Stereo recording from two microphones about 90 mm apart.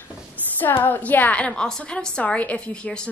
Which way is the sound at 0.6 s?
20° left (ahead or behind).